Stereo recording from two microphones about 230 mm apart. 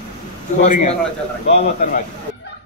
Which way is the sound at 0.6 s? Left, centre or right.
Left.